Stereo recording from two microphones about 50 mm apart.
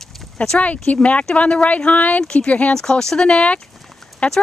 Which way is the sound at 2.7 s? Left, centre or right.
Centre.